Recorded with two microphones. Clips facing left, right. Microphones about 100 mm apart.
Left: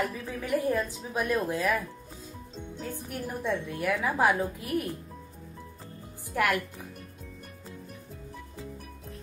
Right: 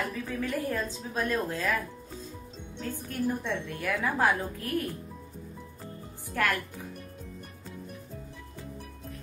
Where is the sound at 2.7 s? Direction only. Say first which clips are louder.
Right 2 dB; 15° left (ahead or behind).